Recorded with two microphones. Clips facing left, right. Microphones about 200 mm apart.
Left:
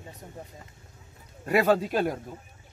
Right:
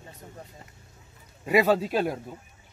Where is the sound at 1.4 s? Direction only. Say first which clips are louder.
Right 1 dB; 10° right (ahead or behind).